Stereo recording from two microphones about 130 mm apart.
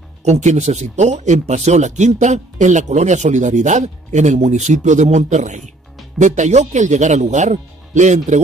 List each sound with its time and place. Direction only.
0.2 s speech: 65° right (ahead or behind)